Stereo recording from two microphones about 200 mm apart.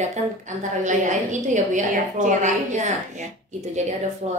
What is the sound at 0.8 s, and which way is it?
A woman's voice, 40° right (ahead or behind).